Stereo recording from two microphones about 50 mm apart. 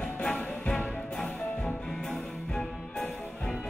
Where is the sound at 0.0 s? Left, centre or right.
Centre.